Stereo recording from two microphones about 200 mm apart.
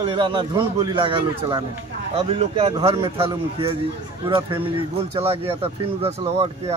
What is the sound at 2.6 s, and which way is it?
Speech, 20° right (ahead or behind).